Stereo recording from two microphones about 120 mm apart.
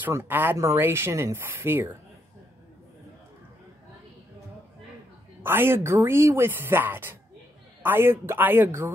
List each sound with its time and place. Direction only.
0.0 s speech: 15° right (ahead or behind)
5.4 s speech: 20° right (ahead or behind)